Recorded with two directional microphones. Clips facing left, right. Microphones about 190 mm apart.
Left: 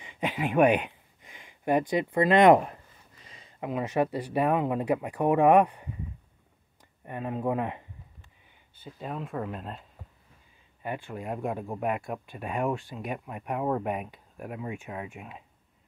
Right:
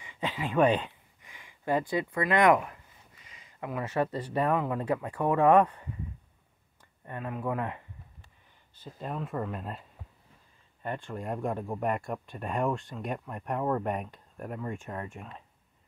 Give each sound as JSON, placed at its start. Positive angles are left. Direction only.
{"t": 0.0, "sound": "speech", "side_deg": 15}
{"t": 3.3, "sound": "a sound", "side_deg": 35}
{"t": 3.6, "sound": "speech", "side_deg": 20}
{"t": 7.1, "sound": "speech", "side_deg": 20}
{"t": 8.7, "sound": "speech", "side_deg": 0}